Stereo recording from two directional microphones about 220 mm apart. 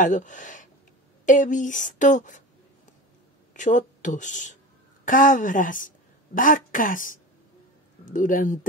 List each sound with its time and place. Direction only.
0.0 s a woman's voice: 35° left (ahead or behind)
3.5 s a woman's voice: 35° left (ahead or behind)